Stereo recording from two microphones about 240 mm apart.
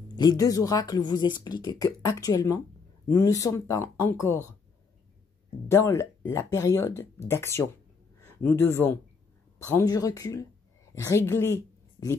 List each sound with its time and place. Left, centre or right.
0.1 s speech: centre
5.7 s a woman's voice: centre